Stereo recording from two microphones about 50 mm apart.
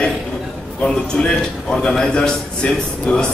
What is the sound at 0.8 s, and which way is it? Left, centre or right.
A man's voice, centre.